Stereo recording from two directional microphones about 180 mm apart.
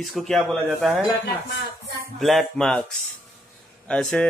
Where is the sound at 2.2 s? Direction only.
Centre (ahead or behind).